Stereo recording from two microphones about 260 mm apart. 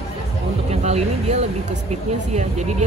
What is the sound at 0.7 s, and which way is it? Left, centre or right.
Speech, right.